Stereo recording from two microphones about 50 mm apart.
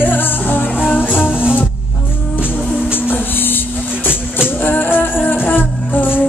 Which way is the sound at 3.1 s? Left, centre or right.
Left.